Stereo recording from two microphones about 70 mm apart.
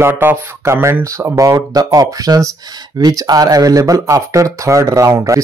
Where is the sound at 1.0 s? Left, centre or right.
Right.